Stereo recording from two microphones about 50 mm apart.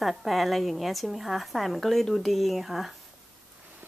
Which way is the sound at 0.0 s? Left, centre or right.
Centre.